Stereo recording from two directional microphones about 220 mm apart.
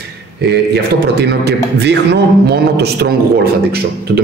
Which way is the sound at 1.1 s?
50° right (ahead or behind).